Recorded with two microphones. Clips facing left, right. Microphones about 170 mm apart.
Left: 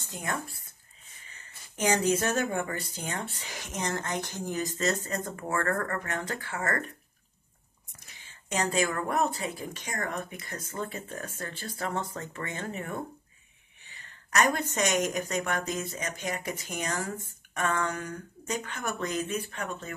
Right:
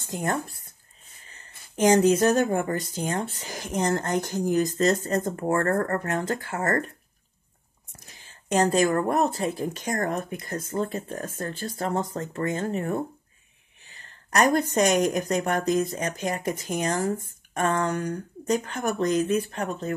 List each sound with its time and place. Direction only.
0.1 s speech: 45° right (ahead or behind)
2.0 s speech: 30° right (ahead or behind)
3.5 s speech: 50° right (ahead or behind)
8.5 s speech: 50° right (ahead or behind)
14.7 s speech: 40° right (ahead or behind)